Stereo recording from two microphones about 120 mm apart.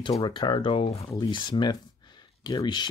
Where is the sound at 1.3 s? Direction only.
40° left (ahead or behind).